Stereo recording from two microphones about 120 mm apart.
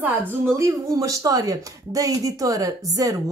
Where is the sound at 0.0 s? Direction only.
25° right (ahead or behind).